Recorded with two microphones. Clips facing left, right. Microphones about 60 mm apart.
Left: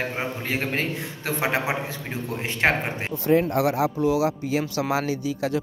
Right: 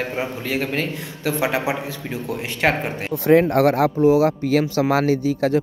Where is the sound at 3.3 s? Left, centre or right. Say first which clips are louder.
Right 6 dB; right.